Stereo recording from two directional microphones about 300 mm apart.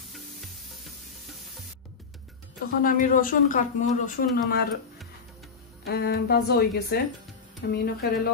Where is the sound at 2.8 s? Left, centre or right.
Left.